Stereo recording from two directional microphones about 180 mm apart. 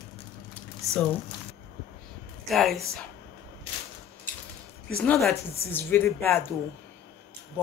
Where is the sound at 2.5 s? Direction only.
Centre (ahead or behind).